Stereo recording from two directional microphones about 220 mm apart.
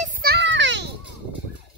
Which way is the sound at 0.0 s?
45° right (ahead or behind).